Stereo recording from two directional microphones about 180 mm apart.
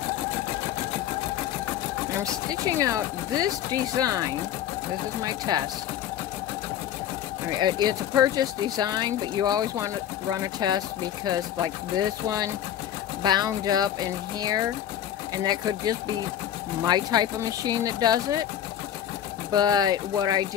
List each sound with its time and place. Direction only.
2.5 s speech: 20° right (ahead or behind)
7.6 s speech: 25° right (ahead or behind)
19.5 s speech: 20° right (ahead or behind)